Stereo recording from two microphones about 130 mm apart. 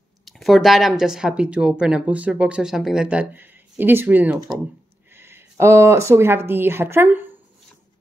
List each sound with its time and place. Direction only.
0.2 s speech: centre (ahead or behind); by 7.2 s 15° right (ahead or behind)